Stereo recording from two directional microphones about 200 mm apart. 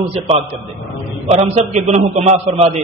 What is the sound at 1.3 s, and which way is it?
A man's voice, 35° right (ahead or behind).